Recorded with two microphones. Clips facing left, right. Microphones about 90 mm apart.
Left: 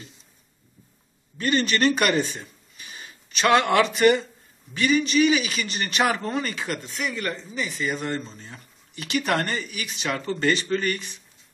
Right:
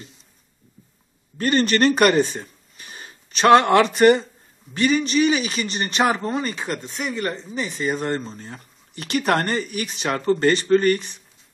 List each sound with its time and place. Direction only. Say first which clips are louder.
1.4 s a man's voice: right 4 dB; 45° right (ahead or behind)